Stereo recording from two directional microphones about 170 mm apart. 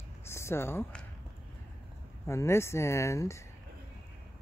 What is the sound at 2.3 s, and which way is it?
Speech, 15° left (ahead or behind).